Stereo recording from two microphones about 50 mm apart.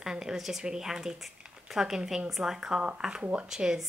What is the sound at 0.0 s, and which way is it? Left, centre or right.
A woman's voice, centre.